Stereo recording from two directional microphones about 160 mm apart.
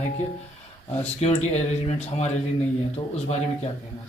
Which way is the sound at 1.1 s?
40° left (ahead or behind).